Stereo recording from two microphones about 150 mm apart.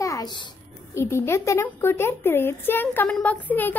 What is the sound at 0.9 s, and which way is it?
A child's voice, 15° left (ahead or behind).